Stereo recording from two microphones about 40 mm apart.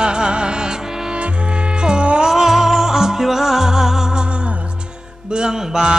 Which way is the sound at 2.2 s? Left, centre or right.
Centre.